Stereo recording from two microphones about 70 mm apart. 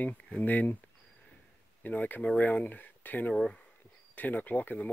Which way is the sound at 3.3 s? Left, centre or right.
Centre.